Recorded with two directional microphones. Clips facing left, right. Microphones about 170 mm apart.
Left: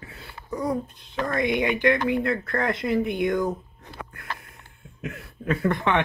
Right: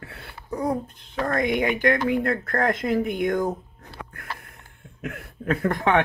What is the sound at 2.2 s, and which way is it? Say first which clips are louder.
Speech: right 2 dB; 50° right (ahead or behind).